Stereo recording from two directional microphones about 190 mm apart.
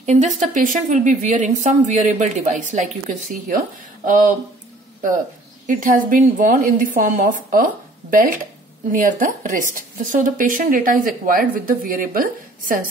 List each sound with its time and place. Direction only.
0.0 s a woman's voice: 40° right (ahead or behind)
5.7 s speech: 45° right (ahead or behind)